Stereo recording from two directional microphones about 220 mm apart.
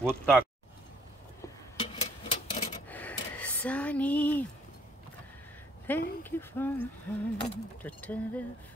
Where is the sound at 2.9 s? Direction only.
5° left (ahead or behind).